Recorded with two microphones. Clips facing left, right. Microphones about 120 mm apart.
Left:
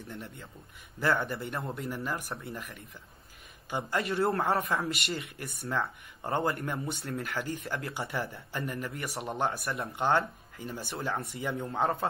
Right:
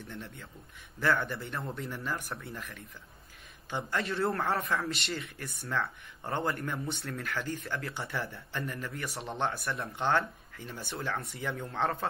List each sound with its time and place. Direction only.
0.0 s speech: centre (ahead or behind)
4.1 s speech: 25° left (ahead or behind)
4.6 s speech: centre (ahead or behind)